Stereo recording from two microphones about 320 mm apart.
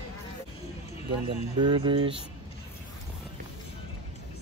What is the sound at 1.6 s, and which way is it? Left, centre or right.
Speech, centre.